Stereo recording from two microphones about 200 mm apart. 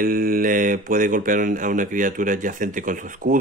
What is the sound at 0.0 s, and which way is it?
Speech, 45° right (ahead or behind).